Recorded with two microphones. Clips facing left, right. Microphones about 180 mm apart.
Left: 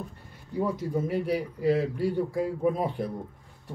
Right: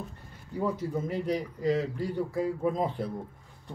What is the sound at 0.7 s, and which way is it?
A man's voice, 10° left (ahead or behind).